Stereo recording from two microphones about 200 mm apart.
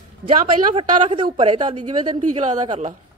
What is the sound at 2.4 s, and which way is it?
Speech, 35° right (ahead or behind).